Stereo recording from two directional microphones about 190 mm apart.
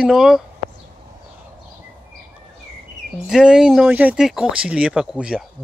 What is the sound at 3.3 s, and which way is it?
Speech, 5° right (ahead or behind).